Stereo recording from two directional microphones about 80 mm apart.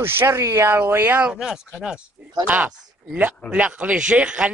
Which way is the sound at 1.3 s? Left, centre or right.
Centre.